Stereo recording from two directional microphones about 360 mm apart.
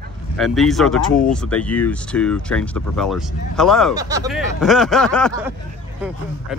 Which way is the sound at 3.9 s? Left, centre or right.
Centre.